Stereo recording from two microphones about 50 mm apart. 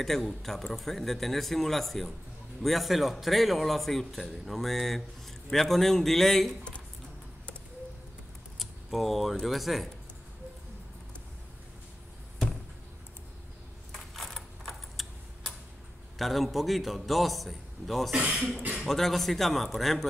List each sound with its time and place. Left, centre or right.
0.0 s a man's voice: centre
8.5 s keys jangling: centre
9.5 s a man's voice: centre
13.9 s a sound: centre
16.2 s a man's voice: centre
18.1 s speech: centre
18.8 s a man's voice: centre